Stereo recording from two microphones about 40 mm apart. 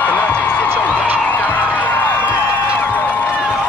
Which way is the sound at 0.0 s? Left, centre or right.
Left.